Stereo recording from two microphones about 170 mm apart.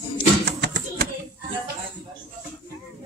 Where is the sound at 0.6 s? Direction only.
75° right (ahead or behind).